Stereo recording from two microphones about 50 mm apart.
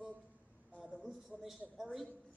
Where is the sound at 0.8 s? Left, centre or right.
Centre.